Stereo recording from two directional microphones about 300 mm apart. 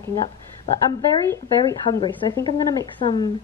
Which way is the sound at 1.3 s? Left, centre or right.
Centre.